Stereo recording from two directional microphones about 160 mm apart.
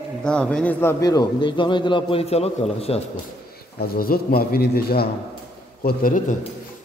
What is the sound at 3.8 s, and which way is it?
A man's voice, 70° left (ahead or behind).